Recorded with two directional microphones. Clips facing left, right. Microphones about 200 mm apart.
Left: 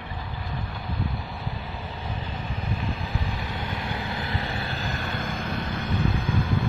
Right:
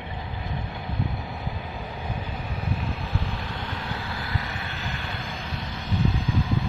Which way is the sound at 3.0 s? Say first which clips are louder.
Even; centre (ahead or behind).